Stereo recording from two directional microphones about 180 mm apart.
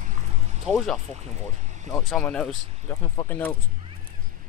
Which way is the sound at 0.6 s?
Centre (ahead or behind).